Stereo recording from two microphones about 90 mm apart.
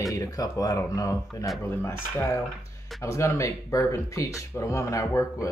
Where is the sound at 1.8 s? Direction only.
30° left (ahead or behind).